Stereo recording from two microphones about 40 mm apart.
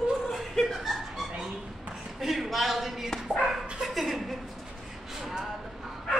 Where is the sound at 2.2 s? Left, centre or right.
Centre.